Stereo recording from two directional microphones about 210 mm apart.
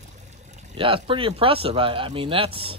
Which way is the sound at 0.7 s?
25° right (ahead or behind).